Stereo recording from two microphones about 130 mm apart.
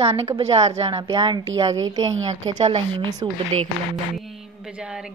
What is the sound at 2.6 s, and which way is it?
Speech, 45° right (ahead or behind).